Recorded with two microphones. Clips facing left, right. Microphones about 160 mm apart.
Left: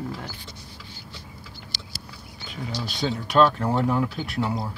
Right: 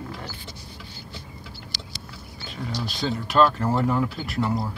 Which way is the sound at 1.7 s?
20° left (ahead or behind).